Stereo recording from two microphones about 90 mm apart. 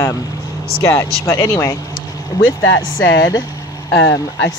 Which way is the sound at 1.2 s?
35° left (ahead or behind).